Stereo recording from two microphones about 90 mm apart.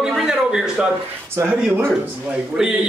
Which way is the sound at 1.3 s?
25° right (ahead or behind).